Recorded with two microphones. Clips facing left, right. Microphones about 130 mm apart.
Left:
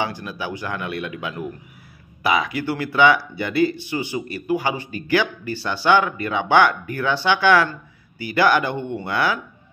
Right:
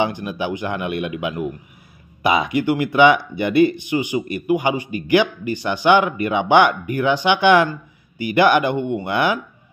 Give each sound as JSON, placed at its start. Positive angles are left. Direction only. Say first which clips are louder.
{"t": 0.0, "sound": "a man's voice", "louder": "right 5 dB", "side_deg": -20}